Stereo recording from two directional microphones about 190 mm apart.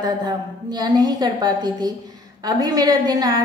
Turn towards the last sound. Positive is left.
turn(degrees=-20)  # may be behind; listen again after turning